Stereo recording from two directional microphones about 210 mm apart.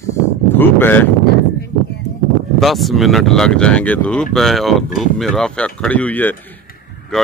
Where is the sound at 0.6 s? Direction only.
10° left (ahead or behind).